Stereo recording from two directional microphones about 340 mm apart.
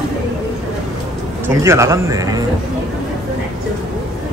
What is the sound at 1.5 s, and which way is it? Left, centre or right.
Speech, centre.